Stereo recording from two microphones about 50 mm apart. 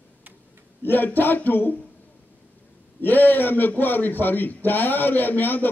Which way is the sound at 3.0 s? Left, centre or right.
Left.